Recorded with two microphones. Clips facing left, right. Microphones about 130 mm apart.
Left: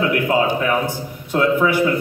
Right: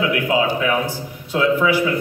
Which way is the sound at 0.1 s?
50° left (ahead or behind).